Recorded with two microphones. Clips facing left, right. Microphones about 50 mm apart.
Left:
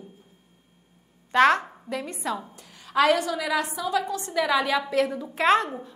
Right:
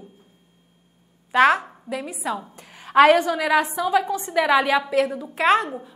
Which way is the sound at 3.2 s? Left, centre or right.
Right.